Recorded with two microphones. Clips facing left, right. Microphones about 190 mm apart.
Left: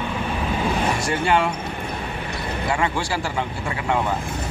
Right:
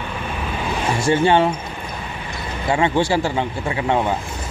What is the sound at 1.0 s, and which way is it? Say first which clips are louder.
Speech: right 9 dB; 25° right (ahead or behind).